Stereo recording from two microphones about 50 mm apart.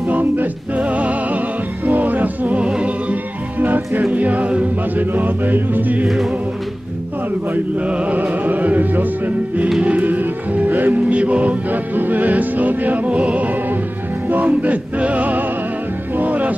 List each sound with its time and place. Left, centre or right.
0.1 s music: right
5.1 s music: right
7.5 s music: right